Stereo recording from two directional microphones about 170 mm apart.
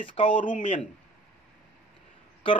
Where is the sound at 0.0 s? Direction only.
30° left (ahead or behind).